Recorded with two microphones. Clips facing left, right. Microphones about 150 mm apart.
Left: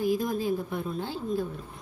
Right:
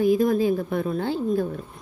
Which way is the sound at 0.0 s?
65° right (ahead or behind).